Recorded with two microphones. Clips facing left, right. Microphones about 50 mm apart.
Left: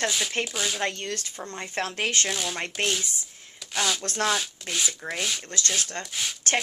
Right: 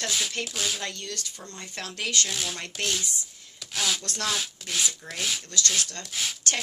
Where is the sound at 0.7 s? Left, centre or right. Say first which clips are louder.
Left 6 dB; left.